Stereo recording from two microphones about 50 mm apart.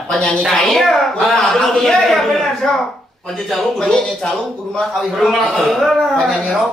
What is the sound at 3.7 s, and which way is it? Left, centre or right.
A man's voice, centre.